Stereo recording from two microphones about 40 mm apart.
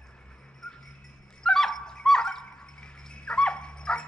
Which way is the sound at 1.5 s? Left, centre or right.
Centre.